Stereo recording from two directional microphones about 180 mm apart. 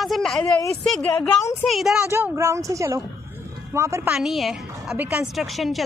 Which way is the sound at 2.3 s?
15° right (ahead or behind).